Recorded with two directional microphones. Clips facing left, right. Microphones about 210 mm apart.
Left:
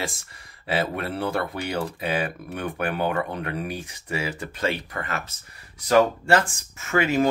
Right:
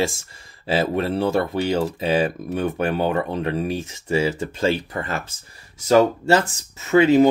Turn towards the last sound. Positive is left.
turn(degrees=-25)  # may be behind; listen again after turning